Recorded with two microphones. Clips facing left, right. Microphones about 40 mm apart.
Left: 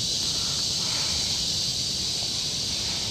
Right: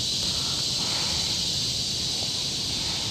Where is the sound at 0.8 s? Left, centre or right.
Centre.